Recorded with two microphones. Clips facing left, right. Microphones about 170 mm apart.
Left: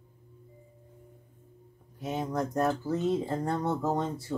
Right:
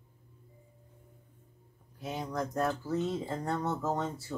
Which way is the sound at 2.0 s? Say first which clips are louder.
Left 4 dB; 20° left (ahead or behind).